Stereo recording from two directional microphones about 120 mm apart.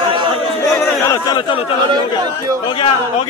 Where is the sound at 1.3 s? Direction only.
45° left (ahead or behind).